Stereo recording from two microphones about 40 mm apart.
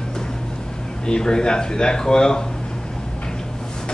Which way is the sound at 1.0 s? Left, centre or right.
Centre.